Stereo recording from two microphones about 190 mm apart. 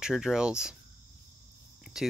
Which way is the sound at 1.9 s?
Centre (ahead or behind).